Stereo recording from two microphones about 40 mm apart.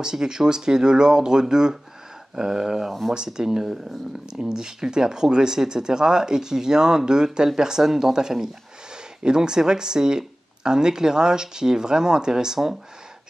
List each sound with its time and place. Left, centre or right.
0.0 s speech: centre